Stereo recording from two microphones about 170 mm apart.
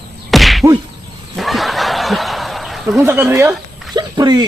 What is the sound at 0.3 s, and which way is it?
Whack, centre (ahead or behind).